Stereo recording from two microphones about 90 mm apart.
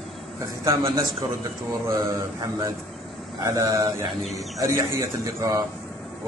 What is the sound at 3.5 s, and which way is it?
Speech, 50° right (ahead or behind).